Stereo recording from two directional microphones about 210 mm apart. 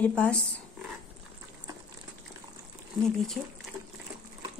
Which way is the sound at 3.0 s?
Centre (ahead or behind).